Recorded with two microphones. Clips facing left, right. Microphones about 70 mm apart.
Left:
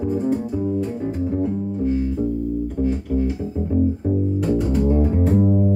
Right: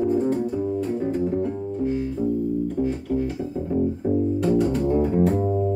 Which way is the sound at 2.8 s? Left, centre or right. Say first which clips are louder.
Left 3 dB; centre.